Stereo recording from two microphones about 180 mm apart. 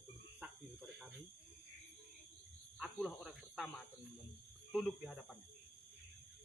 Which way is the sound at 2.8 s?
Centre (ahead or behind).